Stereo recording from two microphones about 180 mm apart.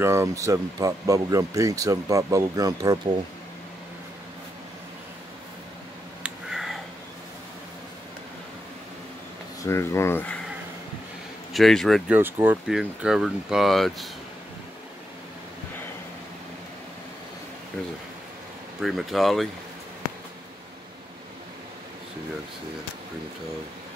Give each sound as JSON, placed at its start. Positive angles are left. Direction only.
{"t": 0.0, "sound": "speech", "side_deg": -15}
{"t": 6.2, "sound": "a sound", "side_deg": 0}
{"t": 9.6, "sound": "speech", "side_deg": 15}
{"t": 11.5, "sound": "speech", "side_deg": 0}
{"t": 12.1, "sound": "speech", "side_deg": -10}
{"t": 18.8, "sound": "speech", "side_deg": 0}